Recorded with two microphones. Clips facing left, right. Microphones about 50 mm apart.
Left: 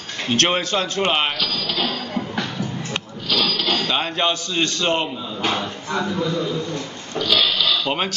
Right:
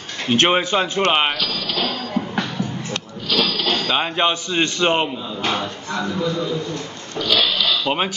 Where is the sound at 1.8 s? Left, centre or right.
Centre.